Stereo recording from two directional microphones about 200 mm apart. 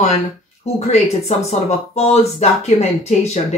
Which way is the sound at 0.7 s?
30° left (ahead or behind).